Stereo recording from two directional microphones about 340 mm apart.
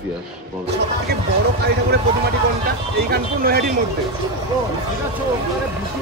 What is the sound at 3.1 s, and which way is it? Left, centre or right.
Speech, right.